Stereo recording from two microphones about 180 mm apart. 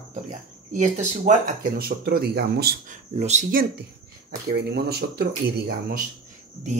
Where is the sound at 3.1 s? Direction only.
40° right (ahead or behind).